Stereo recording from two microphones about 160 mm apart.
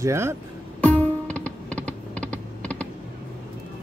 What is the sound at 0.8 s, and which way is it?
Music, 10° left (ahead or behind).